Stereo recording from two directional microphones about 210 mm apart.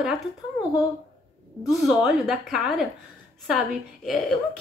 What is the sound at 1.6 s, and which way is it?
A woman's voice, centre (ahead or behind).